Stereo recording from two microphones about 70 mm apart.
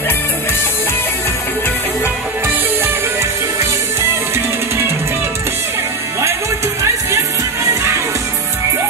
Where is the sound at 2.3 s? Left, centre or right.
Right.